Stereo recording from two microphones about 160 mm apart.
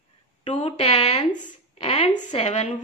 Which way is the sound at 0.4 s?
45° left (ahead or behind).